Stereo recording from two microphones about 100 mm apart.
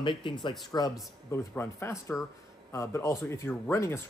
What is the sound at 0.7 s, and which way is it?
A man's voice, 30° left (ahead or behind).